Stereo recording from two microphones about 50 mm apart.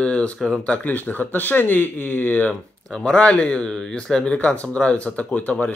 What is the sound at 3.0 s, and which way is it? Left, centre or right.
Speech, left.